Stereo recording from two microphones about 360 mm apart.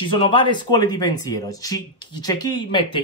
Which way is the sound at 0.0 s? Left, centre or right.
Centre.